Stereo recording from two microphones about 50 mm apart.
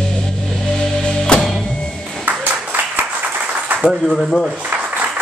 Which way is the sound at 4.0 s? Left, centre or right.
Centre.